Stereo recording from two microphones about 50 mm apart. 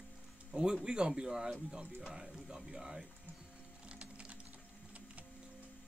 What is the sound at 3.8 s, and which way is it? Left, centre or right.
Typing, right.